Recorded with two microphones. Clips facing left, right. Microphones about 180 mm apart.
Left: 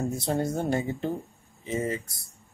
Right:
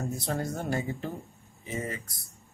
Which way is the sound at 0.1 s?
25° left (ahead or behind).